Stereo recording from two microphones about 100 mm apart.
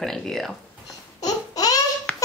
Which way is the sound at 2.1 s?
15° left (ahead or behind).